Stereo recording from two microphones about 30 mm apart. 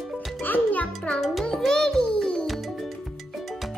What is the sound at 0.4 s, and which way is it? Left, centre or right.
Music, left.